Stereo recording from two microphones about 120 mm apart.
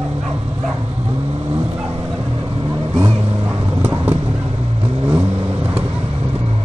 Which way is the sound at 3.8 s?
15° right (ahead or behind).